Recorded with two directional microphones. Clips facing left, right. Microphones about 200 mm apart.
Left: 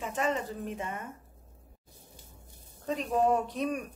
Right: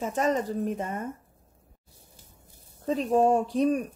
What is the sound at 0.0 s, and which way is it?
Speech, 40° right (ahead or behind).